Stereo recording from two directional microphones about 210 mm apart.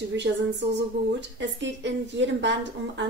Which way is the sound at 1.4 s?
60° right (ahead or behind).